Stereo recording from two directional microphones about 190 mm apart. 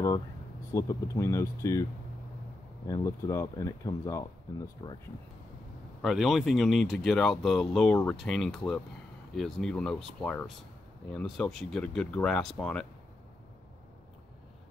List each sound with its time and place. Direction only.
0.7 s speech: 15° left (ahead or behind)
2.9 s speech: 15° left (ahead or behind)
6.0 s speech: centre (ahead or behind)